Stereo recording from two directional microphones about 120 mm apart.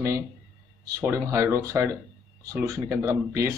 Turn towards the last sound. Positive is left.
turn(degrees=-25)  # may be behind; listen again after turning